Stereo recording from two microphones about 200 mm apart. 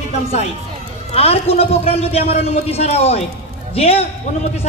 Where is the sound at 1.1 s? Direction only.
30° left (ahead or behind).